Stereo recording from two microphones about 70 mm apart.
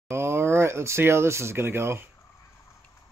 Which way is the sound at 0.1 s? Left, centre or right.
Right.